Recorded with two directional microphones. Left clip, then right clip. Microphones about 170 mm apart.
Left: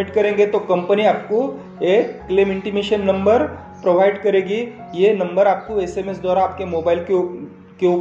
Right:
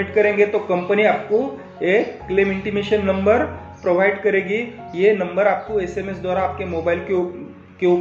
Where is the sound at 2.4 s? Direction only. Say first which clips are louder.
Left 2 dB; 30° left (ahead or behind).